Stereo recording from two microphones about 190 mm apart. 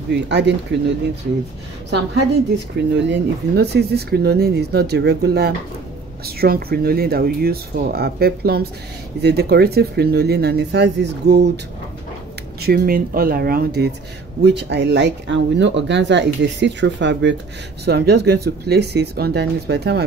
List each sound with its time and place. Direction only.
0.1 s speech: 65° right (ahead or behind)
2.9 s speech: 70° right (ahead or behind)
12.6 s speech: 55° right (ahead or behind)